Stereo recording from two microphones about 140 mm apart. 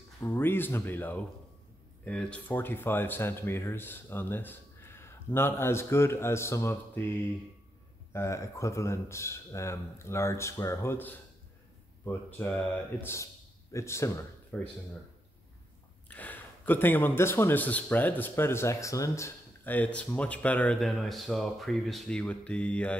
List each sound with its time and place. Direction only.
0.2 s speech: 15° left (ahead or behind)
8.1 s a man's voice: 20° left (ahead or behind)
16.1 s speech: 10° left (ahead or behind)